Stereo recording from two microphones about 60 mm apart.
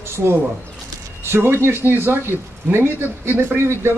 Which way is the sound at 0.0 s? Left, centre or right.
Right.